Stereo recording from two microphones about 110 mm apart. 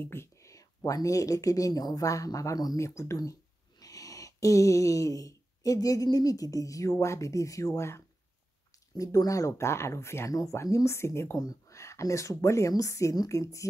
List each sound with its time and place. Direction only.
0.0 s speech: 20° left (ahead or behind)